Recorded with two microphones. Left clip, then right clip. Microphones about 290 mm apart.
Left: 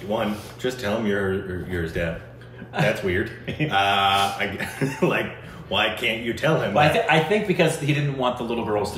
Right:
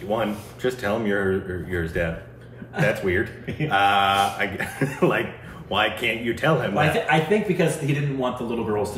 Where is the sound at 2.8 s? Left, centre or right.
Centre.